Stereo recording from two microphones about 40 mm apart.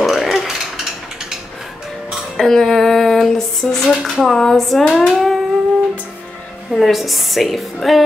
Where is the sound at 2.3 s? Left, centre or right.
Centre.